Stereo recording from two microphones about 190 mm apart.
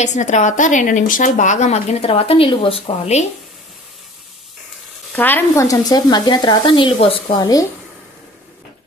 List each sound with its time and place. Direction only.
0.0 s a woman's voice: 40° left (ahead or behind)
5.1 s speech: 10° left (ahead or behind)